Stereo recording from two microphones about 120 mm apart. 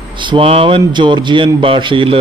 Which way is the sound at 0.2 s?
45° right (ahead or behind).